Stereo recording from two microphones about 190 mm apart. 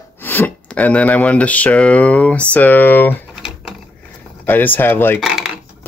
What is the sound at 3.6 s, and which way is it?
Mechanisms, centre (ahead or behind).